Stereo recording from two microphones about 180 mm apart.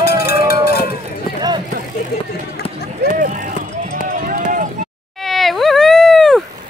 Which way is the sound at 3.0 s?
45° right (ahead or behind).